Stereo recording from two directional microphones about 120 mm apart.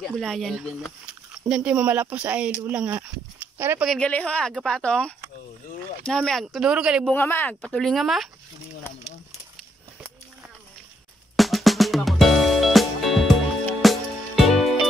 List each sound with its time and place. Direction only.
0.0 s speech: 5° left (ahead or behind); by 3.8 s 20° right (ahead or behind)
4.0 s speech: 10° left (ahead or behind); by 7.1 s 10° right (ahead or behind)
7.2 s speech: 20° left (ahead or behind)
7.6 s speech: 5° left (ahead or behind)
11.3 s music: centre (ahead or behind)